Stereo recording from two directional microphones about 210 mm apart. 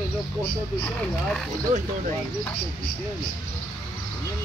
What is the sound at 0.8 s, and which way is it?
Speech, 5° left (ahead or behind).